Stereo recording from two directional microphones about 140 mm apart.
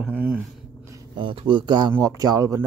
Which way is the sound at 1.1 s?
35° right (ahead or behind).